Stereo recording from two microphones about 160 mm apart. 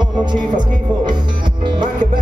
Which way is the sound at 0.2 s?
30° right (ahead or behind).